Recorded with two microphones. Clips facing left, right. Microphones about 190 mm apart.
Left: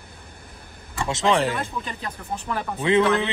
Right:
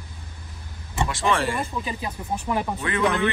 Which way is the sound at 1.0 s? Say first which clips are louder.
Left 4 dB; 20° left (ahead or behind).